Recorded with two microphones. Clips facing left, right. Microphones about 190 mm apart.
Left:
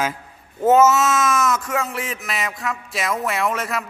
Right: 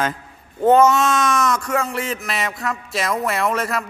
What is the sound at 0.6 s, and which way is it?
Speech, 5° left (ahead or behind).